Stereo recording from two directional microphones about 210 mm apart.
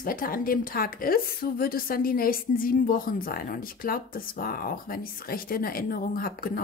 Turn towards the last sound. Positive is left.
turn(degrees=45)  # may be behind; listen again after turning